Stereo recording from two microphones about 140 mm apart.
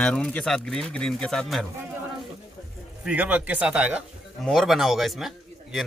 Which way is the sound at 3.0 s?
10° right (ahead or behind).